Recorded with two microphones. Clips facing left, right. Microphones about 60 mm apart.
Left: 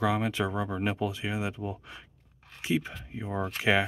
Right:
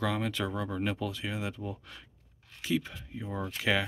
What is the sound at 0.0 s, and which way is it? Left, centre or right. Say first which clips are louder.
Speech: left 4 dB; centre.